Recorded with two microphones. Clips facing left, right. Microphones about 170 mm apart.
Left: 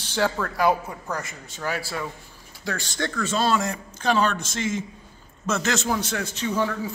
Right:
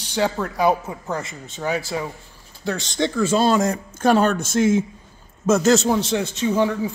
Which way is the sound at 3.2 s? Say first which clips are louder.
Right 5 dB; 30° right (ahead or behind).